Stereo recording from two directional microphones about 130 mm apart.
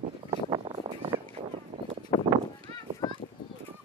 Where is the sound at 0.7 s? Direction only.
45° right (ahead or behind).